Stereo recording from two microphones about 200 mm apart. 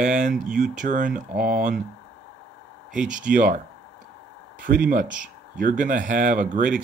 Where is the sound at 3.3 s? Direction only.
45° right (ahead or behind).